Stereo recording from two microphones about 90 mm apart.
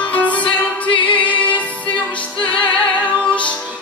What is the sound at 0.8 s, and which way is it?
A capella, 70° left (ahead or behind).